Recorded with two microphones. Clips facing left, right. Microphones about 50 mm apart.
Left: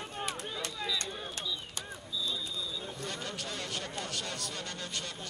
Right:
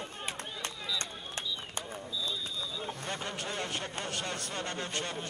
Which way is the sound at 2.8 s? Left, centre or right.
Right.